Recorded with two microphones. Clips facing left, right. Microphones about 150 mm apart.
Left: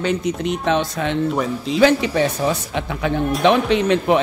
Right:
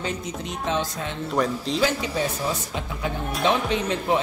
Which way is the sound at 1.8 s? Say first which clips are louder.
Left 10 dB; 75° left (ahead or behind).